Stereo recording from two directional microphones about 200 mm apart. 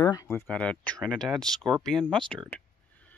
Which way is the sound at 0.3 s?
5° left (ahead or behind).